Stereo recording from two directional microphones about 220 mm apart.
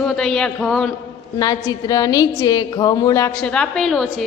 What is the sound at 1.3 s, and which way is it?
A woman's voice, 15° left (ahead or behind).